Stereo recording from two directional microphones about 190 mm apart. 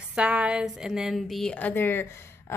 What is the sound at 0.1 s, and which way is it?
A woman's voice, 5° right (ahead or behind).